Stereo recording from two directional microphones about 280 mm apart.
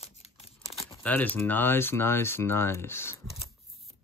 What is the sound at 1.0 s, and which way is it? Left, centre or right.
Speech, centre.